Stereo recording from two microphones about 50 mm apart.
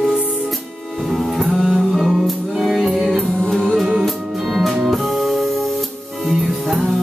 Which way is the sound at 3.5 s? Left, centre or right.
Centre.